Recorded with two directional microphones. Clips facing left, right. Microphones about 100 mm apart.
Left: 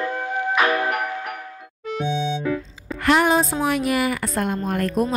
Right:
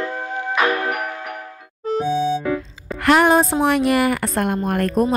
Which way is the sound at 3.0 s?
55° right (ahead or behind).